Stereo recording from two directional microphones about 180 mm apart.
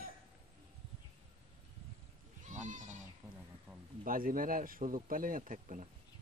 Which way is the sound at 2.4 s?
45° right (ahead or behind).